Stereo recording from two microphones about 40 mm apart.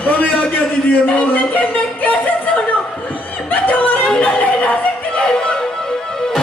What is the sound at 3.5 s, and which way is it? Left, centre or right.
Yodeling, left.